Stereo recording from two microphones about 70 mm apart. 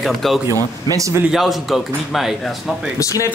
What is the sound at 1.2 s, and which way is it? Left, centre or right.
Speech, centre.